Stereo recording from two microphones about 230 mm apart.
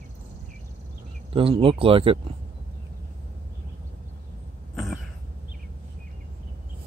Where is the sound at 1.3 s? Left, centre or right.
Right.